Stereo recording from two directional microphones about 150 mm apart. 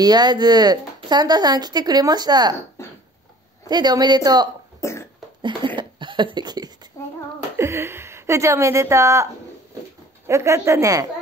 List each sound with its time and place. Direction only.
0.0 s speech: 30° right (ahead or behind)
2.8 s a sound: 20° left (ahead or behind)
3.6 s speech: 25° right (ahead or behind)
4.7 s cough: 20° left (ahead or behind)
5.4 s a sound: 30° right (ahead or behind)
7.5 s a woman's voice: 15° right (ahead or behind)